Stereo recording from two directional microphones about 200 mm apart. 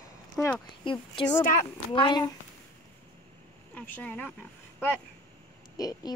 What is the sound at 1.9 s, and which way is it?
Speech, 20° left (ahead or behind).